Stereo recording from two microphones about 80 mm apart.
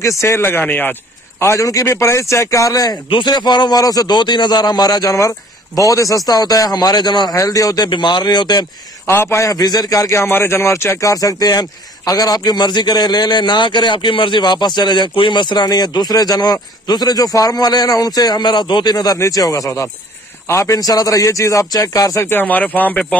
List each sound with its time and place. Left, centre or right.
0.0 s speech: left
1.4 s a man's voice: left
3.1 s a man's voice: left
3.8 s a man's voice: left
7.3 s a man's voice: left
7.9 s a man's voice: left
9.0 s a man's voice: left
10.3 s a man's voice: left
19.1 s a man's voice: left
22.2 s speech: left